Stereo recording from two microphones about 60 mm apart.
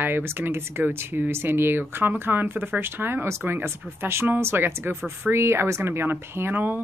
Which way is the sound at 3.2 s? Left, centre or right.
Right.